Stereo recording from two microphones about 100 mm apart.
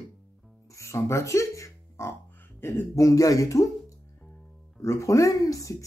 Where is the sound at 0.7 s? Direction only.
30° left (ahead or behind).